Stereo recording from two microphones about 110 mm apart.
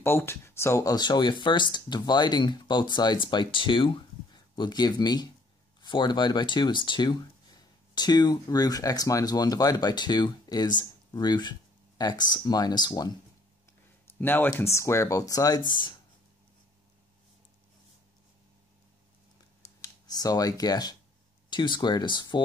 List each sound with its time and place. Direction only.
0.0 s speech: 20° left (ahead or behind)
0.9 s speech: 40° left (ahead or behind)
14.0 s speech: 20° left (ahead or behind); by 15.9 s 45° left (ahead or behind)
20.1 s speech: 35° left (ahead or behind)